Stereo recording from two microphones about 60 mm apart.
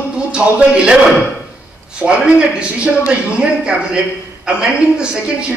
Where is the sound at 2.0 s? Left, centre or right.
Centre.